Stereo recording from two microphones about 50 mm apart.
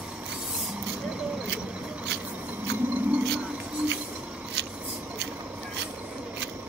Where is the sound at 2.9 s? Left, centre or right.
Right.